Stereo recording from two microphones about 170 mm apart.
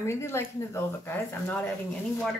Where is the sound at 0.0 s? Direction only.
15° left (ahead or behind).